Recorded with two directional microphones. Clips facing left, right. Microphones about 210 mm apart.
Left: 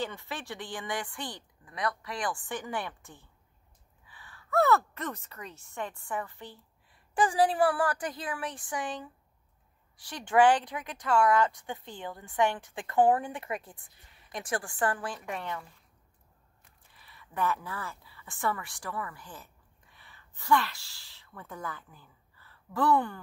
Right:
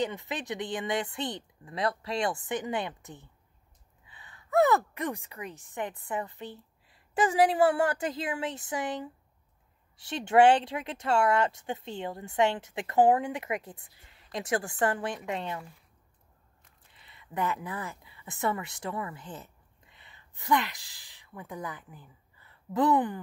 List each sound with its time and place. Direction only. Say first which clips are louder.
0.0 s speech: right 4 dB; 20° right (ahead or behind)
16.9 s speech: right 3 dB; 20° right (ahead or behind)